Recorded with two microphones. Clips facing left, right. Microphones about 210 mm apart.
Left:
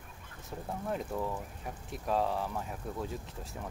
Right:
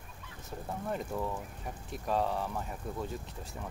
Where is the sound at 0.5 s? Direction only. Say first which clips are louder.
Even; centre (ahead or behind).